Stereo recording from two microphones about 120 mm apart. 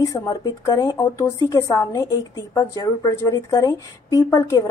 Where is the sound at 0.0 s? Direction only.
25° left (ahead or behind).